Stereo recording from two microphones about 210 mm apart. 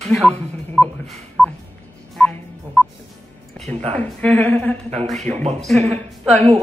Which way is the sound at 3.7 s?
30° right (ahead or behind).